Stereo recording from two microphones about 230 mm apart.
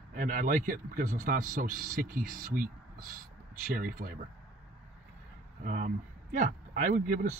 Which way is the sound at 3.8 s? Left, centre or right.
Right.